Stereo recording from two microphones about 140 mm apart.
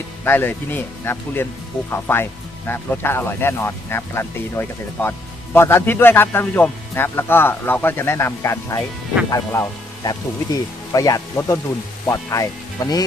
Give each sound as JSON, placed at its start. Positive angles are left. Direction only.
{"t": 0.2, "sound": "speech", "side_deg": 15}